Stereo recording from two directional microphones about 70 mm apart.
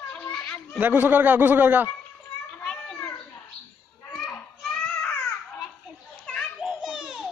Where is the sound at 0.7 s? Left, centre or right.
Right.